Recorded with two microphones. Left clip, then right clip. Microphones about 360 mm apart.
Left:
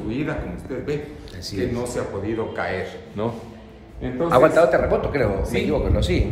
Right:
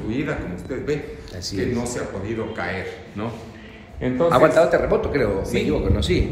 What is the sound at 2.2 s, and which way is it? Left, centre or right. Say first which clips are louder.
A man's voice: left 2 dB; left.